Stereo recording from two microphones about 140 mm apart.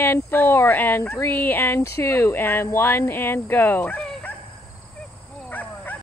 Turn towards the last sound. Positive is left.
turn(degrees=10)  # may be behind; listen again after turning